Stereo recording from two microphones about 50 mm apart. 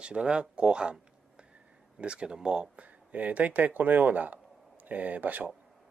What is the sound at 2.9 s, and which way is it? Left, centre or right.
Speech, right.